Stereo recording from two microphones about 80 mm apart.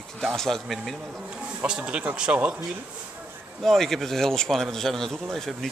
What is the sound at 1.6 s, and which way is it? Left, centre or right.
Speech, centre.